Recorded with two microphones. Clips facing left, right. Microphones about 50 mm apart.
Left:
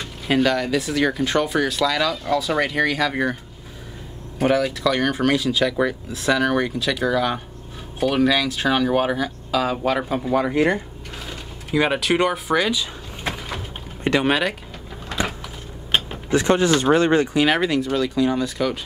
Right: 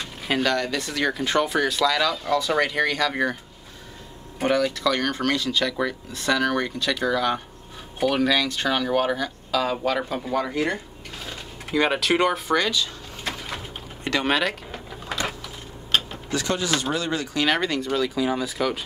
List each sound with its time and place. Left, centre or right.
0.3 s speech: centre
4.4 s speech: centre; by 10.8 s left
11.2 s a sound: centre
14.2 s speech: centre
15.1 s a sound: centre
15.9 s mechanisms: left
16.8 s speech: left
17.3 s speech: centre